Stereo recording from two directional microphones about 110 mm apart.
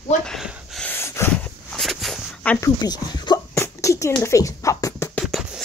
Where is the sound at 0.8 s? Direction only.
20° left (ahead or behind).